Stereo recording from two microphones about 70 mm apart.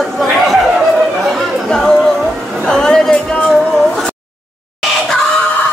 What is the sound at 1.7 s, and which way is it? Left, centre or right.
Music, centre.